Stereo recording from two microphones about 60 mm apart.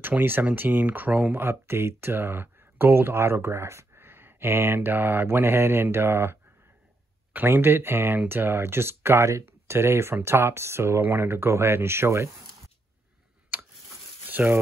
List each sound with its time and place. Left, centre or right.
0.0 s speech: right
1.3 s speech: right
7.3 s speech: right
13.5 s a sound: right